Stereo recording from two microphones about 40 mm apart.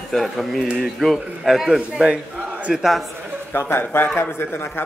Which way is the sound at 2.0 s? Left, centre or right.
Right.